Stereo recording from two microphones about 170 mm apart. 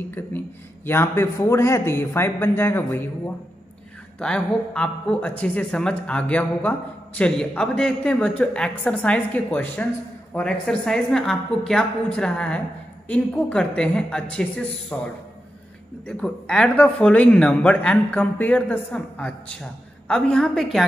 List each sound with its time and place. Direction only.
0.8 s speech: 15° left (ahead or behind)
4.2 s a woman's voice: 5° left (ahead or behind)
16.1 s a woman's voice: 5° left (ahead or behind)